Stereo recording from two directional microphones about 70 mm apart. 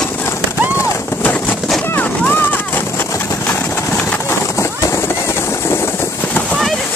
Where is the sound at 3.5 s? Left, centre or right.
Left.